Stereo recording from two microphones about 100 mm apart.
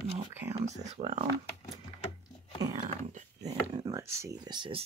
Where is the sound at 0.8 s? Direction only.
90° right.